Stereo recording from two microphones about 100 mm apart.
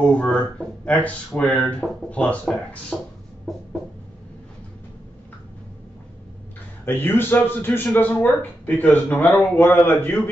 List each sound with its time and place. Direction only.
0.1 s speech: 15° left (ahead or behind)
3.5 s chicken: centre (ahead or behind)
6.8 s speech: 20° left (ahead or behind)